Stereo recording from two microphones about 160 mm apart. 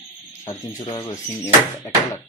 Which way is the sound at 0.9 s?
15° left (ahead or behind).